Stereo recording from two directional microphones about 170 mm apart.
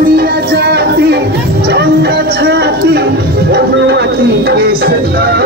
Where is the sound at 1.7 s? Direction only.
70° right (ahead or behind).